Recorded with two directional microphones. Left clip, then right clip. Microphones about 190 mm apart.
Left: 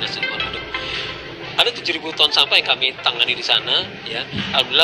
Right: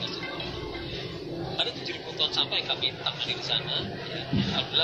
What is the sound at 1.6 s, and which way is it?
Speech, 45° left (ahead or behind).